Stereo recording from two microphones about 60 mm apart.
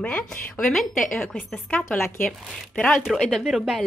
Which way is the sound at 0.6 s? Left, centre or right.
Centre.